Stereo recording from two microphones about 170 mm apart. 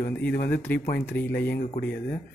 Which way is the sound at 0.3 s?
60° left (ahead or behind).